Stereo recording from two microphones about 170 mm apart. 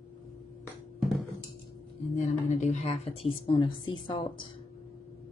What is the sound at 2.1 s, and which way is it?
A woman's voice, 45° left (ahead or behind).